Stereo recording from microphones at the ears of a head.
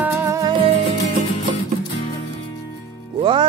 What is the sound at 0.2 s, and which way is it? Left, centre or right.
Music, right.